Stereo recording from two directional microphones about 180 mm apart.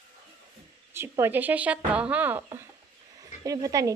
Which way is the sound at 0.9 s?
15° right (ahead or behind).